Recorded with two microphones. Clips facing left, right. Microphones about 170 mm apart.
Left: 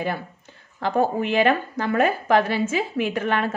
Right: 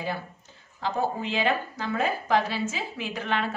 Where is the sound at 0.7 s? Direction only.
60° left (ahead or behind).